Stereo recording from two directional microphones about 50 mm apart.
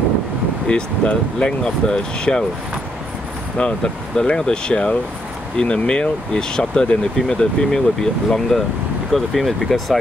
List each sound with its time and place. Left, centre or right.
0.7 s speech: left
3.5 s speech: centre